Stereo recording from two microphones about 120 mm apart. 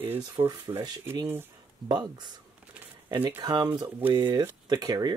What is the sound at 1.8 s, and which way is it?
Speech, 35° right (ahead or behind).